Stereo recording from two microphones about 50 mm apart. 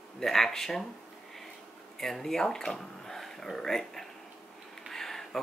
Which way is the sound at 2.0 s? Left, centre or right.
Centre.